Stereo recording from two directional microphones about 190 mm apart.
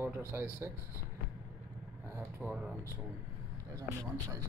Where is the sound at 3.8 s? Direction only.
15° right (ahead or behind).